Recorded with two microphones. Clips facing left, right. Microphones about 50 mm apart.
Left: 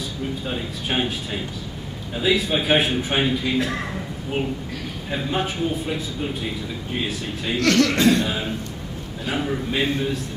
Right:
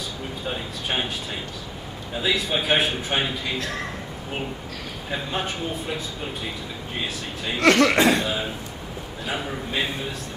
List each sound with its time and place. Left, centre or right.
0.5 s speech: centre
5.1 s speech: centre
7.5 s speech: right
8.2 s speech: centre